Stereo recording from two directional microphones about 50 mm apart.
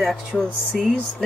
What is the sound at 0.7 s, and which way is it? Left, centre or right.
Speech, centre.